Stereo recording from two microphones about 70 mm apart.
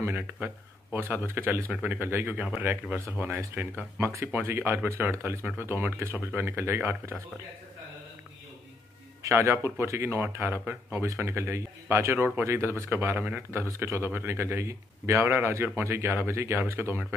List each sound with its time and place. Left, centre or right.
0.0 s speech: right
4.1 s speech: right
4.4 s speech: right
9.2 s speech: right